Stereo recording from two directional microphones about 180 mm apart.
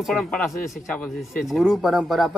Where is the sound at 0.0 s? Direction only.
Centre (ahead or behind).